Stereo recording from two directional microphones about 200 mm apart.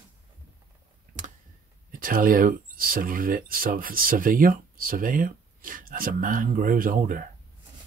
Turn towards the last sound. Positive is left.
turn(degrees=-45)  # may be behind; listen again after turning